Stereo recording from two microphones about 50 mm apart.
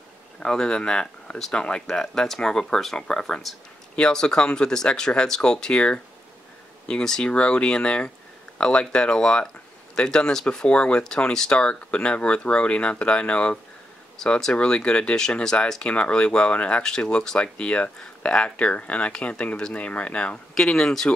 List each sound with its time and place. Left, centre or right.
0.4 s speech: centre
1.9 s speech: centre; by 20.3 s left
20.5 s speech: centre